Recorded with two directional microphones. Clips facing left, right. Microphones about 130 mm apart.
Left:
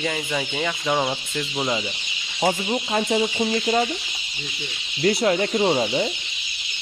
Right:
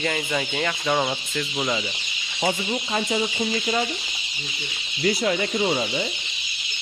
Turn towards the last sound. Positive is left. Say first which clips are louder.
# left 4 dB
turn(degrees=40)  # may be behind; listen again after turning